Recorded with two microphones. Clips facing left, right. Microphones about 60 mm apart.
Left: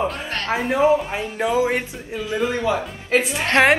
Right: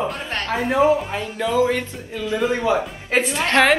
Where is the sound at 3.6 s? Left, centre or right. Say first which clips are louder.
Left 1 dB; centre.